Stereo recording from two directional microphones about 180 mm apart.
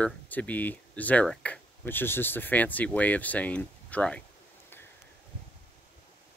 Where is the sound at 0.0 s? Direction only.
10° left (ahead or behind).